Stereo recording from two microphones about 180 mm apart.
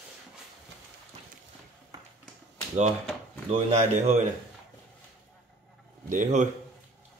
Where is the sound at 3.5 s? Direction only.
40° right (ahead or behind).